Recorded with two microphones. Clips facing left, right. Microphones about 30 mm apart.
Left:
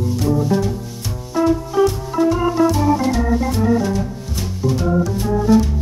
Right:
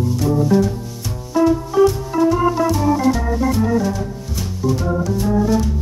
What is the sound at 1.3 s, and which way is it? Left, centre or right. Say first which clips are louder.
Music: right 2 dB; centre.